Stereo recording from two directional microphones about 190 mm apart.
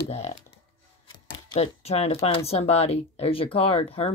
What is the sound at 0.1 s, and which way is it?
Speech, 35° left (ahead or behind).